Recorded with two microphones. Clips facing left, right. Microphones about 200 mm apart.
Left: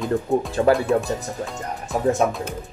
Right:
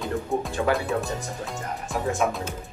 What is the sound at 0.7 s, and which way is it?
Speech, 35° left (ahead or behind).